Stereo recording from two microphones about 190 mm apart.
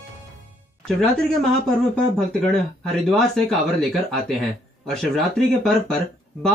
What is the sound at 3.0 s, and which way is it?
Speech, centre (ahead or behind).